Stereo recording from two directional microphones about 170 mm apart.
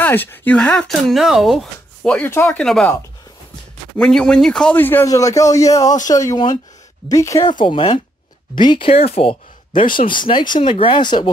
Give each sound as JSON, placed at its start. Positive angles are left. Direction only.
{"t": 0.0, "sound": "speech", "side_deg": 10}
{"t": 4.0, "sound": "a man's voice", "side_deg": 5}